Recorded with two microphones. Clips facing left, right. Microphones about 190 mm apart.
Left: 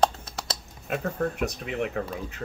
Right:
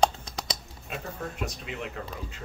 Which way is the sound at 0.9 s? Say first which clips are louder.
Left 8 dB; 55° left (ahead or behind).